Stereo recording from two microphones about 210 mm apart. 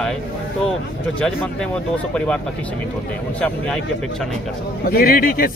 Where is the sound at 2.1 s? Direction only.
5° left (ahead or behind).